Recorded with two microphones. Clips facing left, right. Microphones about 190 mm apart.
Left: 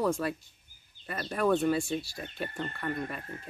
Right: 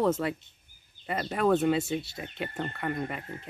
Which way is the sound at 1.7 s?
20° right (ahead or behind).